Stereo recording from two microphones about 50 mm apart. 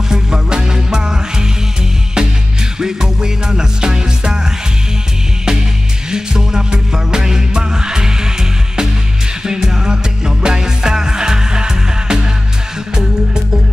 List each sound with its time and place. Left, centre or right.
0.1 s music: centre
6.0 s music: centre